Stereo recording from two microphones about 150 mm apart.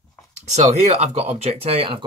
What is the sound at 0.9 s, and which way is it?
Speech, 45° right (ahead or behind).